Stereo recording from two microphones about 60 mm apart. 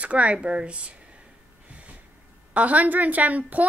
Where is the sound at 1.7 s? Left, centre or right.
Right.